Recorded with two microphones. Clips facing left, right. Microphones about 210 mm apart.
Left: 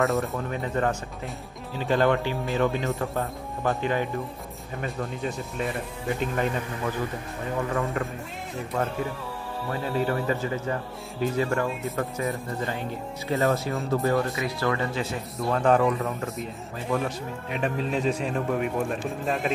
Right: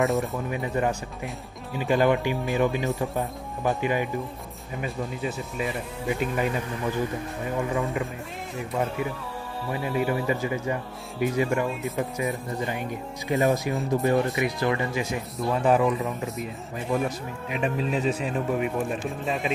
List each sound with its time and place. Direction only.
0.0 s speech: centre (ahead or behind)
0.5 s speech: 10° right (ahead or behind)
9.7 s speech: 10° right (ahead or behind)
13.3 s speech: 15° right (ahead or behind)
15.3 s speech: 5° right (ahead or behind)